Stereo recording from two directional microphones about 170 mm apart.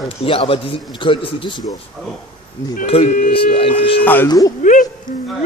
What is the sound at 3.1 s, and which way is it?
Speech, 55° left (ahead or behind).